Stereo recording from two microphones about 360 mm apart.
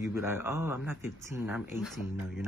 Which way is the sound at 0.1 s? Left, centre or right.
Centre.